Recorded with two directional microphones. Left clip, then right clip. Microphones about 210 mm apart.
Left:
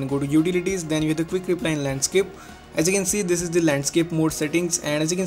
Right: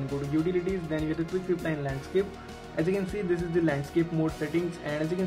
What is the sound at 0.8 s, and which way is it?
Music, 40° left (ahead or behind).